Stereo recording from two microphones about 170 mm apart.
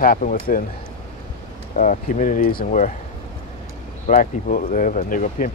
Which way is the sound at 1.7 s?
50° left (ahead or behind).